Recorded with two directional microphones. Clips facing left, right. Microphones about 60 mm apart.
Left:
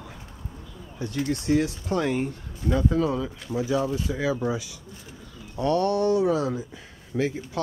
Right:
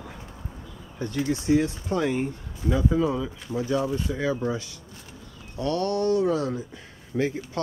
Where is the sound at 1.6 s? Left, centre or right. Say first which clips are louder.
Even; centre.